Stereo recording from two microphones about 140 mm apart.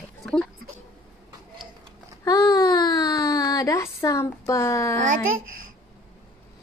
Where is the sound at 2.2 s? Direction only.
25° left (ahead or behind).